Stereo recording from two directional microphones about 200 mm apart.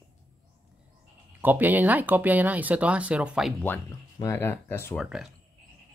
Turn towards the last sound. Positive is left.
turn(degrees=-5)  # may be behind; listen again after turning